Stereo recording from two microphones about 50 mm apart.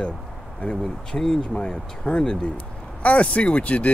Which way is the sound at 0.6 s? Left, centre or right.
Left.